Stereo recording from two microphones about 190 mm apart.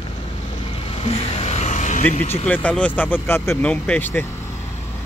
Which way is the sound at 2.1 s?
35° left (ahead or behind).